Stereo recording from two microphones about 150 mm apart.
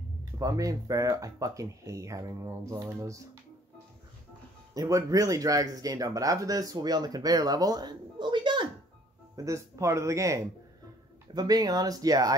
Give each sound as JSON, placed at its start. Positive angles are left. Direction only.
{"t": 0.2, "sound": "speech", "side_deg": -25}
{"t": 4.7, "sound": "speech", "side_deg": -25}
{"t": 9.3, "sound": "speech", "side_deg": -20}